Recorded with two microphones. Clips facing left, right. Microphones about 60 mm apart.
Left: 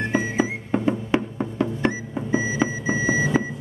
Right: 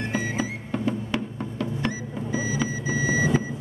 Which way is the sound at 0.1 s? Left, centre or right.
Left.